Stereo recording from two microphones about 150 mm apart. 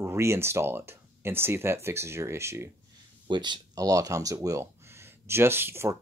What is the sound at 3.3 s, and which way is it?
Speech, 30° right (ahead or behind).